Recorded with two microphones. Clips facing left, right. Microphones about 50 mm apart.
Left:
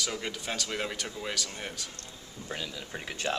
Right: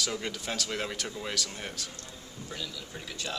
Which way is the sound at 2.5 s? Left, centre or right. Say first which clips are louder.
Left 3 dB; left.